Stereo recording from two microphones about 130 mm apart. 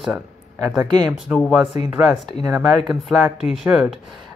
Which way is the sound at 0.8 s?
30° right (ahead or behind).